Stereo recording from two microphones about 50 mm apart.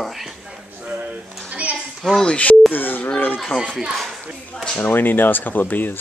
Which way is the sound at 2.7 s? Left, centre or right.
Left.